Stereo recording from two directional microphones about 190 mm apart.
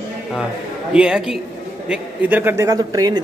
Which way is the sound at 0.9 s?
5° right (ahead or behind).